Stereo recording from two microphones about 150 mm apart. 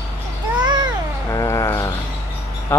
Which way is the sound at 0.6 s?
30° right (ahead or behind).